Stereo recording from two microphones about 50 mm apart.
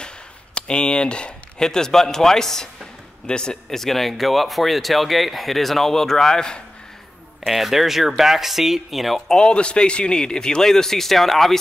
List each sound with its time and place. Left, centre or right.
0.6 s speech: centre
7.4 s speech: centre
9.3 s speech: centre